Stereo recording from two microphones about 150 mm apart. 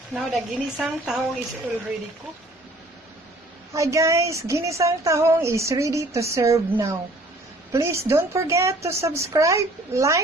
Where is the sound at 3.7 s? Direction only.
20° right (ahead or behind).